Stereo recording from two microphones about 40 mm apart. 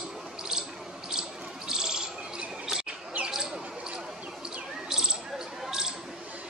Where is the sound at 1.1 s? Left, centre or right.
Centre.